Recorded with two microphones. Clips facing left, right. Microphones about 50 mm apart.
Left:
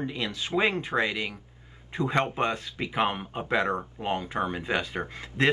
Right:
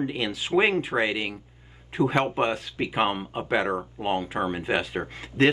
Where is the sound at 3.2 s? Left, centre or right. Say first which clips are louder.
Right 1 dB; centre.